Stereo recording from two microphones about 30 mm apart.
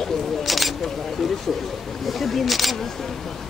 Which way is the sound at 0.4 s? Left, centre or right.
Centre.